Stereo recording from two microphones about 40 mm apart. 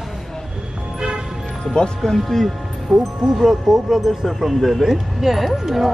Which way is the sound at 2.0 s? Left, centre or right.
Centre.